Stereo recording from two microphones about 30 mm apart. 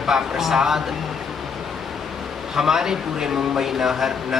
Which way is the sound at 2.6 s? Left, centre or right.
Centre.